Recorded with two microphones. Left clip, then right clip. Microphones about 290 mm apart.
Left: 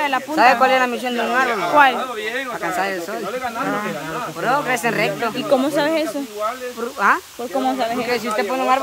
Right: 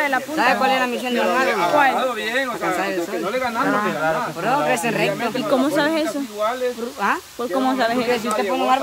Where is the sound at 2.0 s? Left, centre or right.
Right.